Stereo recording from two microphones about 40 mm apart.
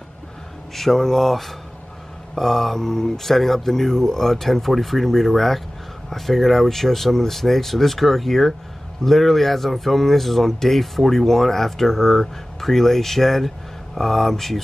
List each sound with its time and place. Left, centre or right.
0.7 s speech: centre